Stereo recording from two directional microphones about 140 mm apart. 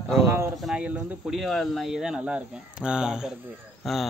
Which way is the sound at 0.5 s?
5° right (ahead or behind).